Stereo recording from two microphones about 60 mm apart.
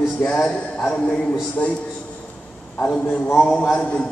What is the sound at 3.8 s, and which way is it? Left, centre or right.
Speech, centre.